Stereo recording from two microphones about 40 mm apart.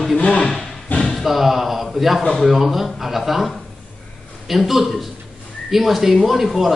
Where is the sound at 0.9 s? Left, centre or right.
Left.